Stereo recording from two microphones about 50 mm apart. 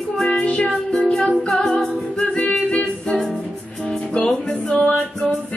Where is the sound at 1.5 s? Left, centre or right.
Centre.